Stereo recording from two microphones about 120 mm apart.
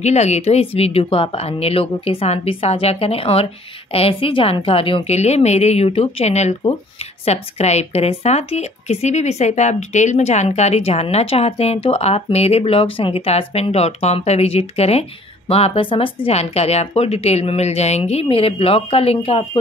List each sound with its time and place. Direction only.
0.0 s speech: 70° left (ahead or behind); by 19.6 s 50° left (ahead or behind)